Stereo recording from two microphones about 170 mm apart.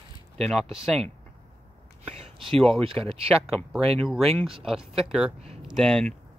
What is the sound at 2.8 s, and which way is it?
Speech, 35° right (ahead or behind).